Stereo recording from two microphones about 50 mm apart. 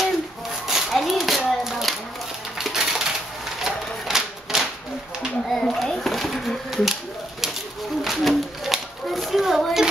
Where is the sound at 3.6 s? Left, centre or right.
Centre.